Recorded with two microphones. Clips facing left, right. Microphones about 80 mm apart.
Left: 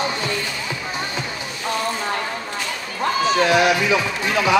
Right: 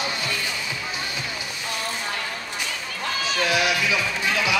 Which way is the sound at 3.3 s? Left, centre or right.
Left.